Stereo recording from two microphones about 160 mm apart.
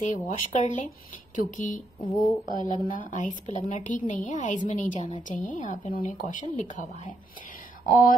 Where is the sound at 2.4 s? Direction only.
25° right (ahead or behind).